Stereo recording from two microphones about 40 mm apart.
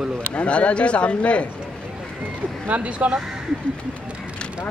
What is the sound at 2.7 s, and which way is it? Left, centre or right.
Speech, right.